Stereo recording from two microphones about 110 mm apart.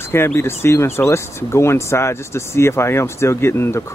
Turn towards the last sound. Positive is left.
turn(degrees=25)  # may be behind; listen again after turning